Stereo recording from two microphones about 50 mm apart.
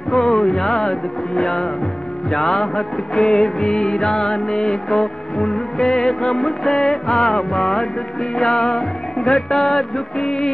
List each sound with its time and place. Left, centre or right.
0.1 s music: centre
4.0 s music: centre
4.4 s music: centre
8.4 s music: left
8.7 s music: centre